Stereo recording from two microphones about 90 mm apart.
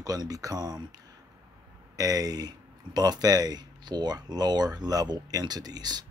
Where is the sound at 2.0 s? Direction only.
45° right (ahead or behind).